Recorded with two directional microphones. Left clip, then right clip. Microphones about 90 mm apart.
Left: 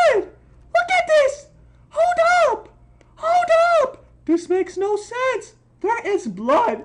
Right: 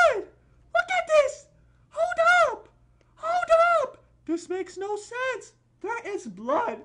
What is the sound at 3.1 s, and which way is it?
Speech, 15° right (ahead or behind).